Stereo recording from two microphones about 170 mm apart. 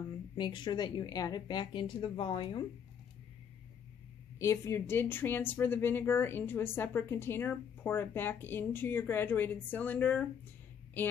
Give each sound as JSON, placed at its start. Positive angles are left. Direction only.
{"t": 0.4, "sound": "speech", "side_deg": 25}
{"t": 4.4, "sound": "speech", "side_deg": 15}